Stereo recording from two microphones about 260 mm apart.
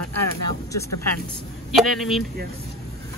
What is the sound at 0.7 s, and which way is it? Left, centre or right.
Speech, centre.